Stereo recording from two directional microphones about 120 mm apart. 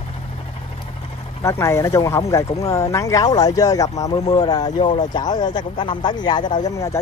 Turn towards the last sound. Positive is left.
turn(degrees=30)  # may be behind; listen again after turning